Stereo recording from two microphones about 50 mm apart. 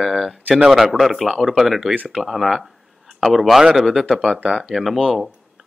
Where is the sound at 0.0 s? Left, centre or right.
Centre.